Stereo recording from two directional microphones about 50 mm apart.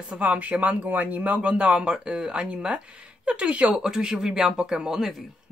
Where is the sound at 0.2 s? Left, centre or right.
Right.